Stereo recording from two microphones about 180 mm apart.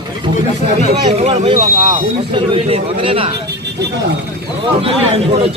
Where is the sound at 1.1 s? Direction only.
40° right (ahead or behind).